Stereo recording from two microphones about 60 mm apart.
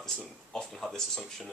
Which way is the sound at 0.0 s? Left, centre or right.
Centre.